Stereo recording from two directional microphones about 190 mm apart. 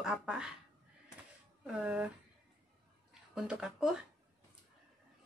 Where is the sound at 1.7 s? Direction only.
5° right (ahead or behind).